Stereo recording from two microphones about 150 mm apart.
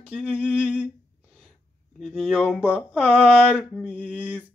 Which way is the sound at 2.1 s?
5° left (ahead or behind).